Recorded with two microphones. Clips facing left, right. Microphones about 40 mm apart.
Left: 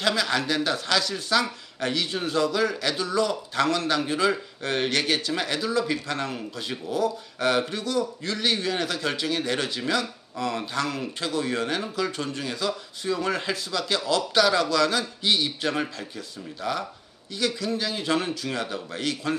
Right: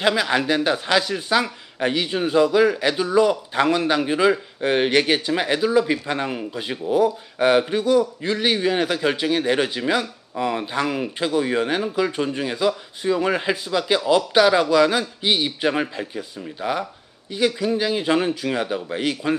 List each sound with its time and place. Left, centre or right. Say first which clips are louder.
0.0 s speech: right 5 dB; right